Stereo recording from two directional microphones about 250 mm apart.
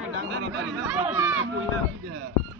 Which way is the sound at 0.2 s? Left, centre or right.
Right.